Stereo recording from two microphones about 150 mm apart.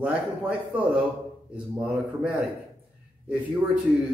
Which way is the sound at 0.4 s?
10° right (ahead or behind).